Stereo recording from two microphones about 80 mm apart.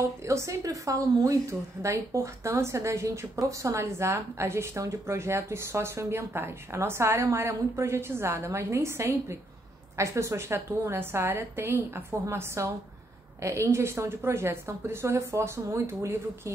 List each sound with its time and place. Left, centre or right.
0.2 s a woman's voice: right